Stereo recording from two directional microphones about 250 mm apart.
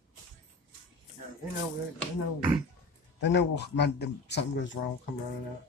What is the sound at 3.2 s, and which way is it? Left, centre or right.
A man's voice, left.